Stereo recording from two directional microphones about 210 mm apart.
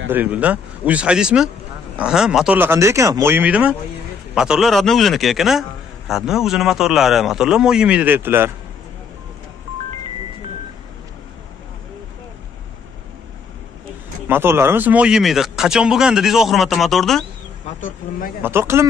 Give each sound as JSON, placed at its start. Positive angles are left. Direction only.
{"t": 0.1, "sound": "a man's voice", "side_deg": -10}
{"t": 14.2, "sound": "a man's voice", "side_deg": -10}
{"t": 17.7, "sound": "speech", "side_deg": 40}
{"t": 18.4, "sound": "speech", "side_deg": -10}